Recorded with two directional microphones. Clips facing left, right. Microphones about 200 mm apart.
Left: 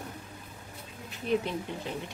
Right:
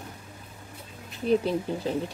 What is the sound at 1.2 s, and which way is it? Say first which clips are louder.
Speech: right 6 dB; 35° right (ahead or behind).